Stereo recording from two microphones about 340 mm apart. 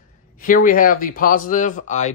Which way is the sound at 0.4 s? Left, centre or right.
Left.